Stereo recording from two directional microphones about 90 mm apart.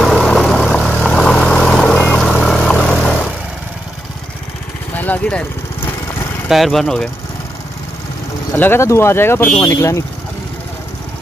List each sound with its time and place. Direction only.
0.0 s vehicle: centre (ahead or behind)
4.9 s vehicle: 20° left (ahead or behind)
6.5 s speech: centre (ahead or behind)
8.5 s speech: 25° left (ahead or behind)